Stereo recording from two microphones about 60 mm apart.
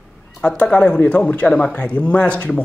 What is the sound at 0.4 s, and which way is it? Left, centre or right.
A man's voice, centre.